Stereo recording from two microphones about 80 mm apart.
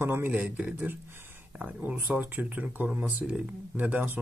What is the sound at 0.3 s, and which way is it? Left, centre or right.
Speech, centre.